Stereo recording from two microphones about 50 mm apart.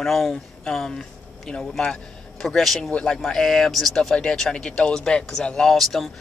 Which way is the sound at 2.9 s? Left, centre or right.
Centre.